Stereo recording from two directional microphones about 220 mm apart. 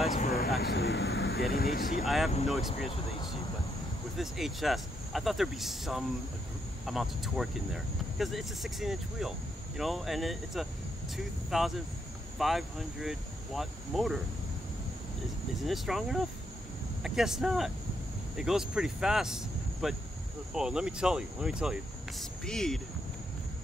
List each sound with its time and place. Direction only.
0.0 s vehicle: 35° left (ahead or behind)
2.0 s speech: centre (ahead or behind)
4.2 s speech: centre (ahead or behind)
15.6 s speech: centre (ahead or behind)